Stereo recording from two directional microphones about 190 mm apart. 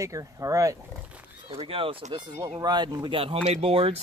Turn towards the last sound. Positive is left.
turn(degrees=-30)  # may be behind; listen again after turning